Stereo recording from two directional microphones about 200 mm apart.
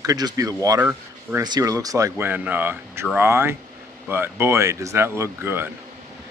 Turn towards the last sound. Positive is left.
turn(degrees=-10)  # may be behind; listen again after turning